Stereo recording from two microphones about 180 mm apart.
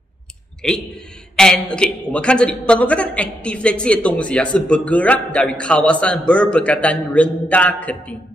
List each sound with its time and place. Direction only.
0.6 s a man's voice: centre (ahead or behind)